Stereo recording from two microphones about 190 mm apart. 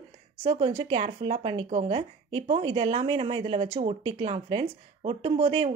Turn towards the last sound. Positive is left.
turn(degrees=-30)  # may be behind; listen again after turning